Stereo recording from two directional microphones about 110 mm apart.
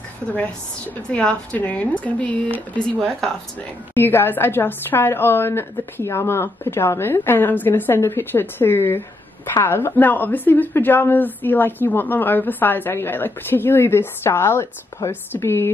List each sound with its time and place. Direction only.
0.3 s a woman's voice: 10° left (ahead or behind)
3.9 s a woman's voice: 20° left (ahead or behind)